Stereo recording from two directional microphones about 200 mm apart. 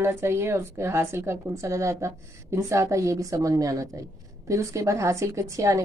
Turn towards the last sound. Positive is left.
turn(degrees=-15)  # may be behind; listen again after turning